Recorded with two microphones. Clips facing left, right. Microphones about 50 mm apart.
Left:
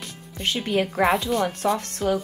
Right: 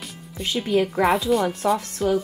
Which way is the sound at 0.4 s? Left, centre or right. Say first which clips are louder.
Right 2 dB; left.